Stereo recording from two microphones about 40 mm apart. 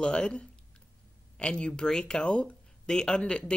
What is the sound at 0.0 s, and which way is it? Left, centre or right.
Speech, left.